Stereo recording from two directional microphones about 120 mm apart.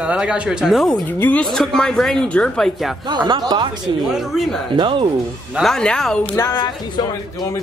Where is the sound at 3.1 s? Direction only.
35° right (ahead or behind).